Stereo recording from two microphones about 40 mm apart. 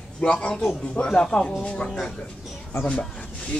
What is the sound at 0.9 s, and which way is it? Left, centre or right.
Speech, left.